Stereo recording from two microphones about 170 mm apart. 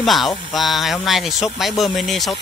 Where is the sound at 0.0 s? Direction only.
Centre (ahead or behind).